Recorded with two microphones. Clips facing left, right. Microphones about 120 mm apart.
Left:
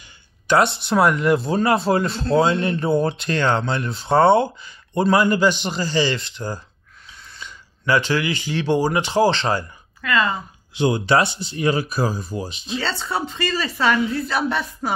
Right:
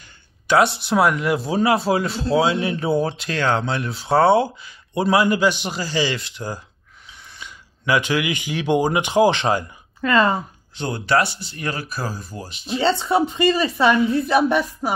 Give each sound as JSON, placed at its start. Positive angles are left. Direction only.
{"t": 0.5, "sound": "speech", "side_deg": -5}
{"t": 10.0, "sound": "speech", "side_deg": -35}
{"t": 10.7, "sound": "speech", "side_deg": 15}
{"t": 12.7, "sound": "speech", "side_deg": -20}